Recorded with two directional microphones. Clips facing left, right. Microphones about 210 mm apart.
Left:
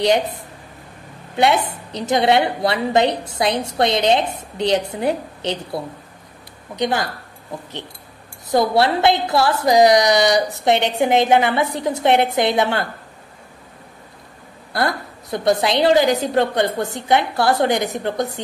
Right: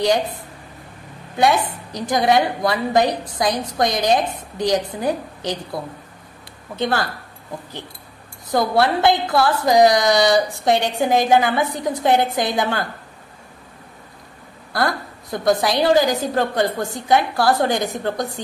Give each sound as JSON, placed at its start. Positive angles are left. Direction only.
{"t": 1.3, "sound": "a woman's voice", "side_deg": 25}
{"t": 6.7, "sound": "speech", "side_deg": 20}
{"t": 8.5, "sound": "a woman's voice", "side_deg": 20}
{"t": 14.7, "sound": "a woman's voice", "side_deg": 20}